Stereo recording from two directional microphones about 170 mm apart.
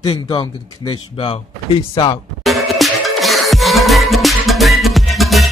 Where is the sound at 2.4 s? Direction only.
Centre (ahead or behind).